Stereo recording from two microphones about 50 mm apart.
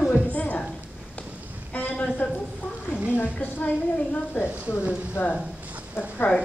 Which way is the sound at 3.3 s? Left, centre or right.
Left.